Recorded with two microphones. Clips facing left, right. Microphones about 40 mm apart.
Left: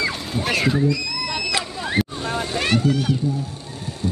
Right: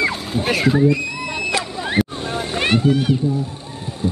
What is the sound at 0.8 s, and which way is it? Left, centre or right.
Music, right.